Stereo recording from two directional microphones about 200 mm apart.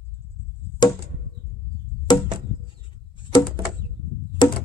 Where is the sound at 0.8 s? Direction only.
20° left (ahead or behind).